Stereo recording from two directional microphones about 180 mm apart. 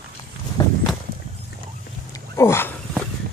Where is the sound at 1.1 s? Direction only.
60° right (ahead or behind).